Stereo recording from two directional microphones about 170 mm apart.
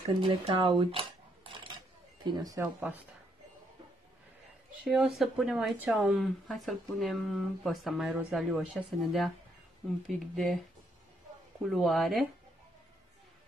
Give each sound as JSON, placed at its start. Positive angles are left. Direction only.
{"t": 0.2, "sound": "speech", "side_deg": -35}
{"t": 2.6, "sound": "speech", "side_deg": -10}
{"t": 4.8, "sound": "speech", "side_deg": 0}
{"t": 11.6, "sound": "speech", "side_deg": 0}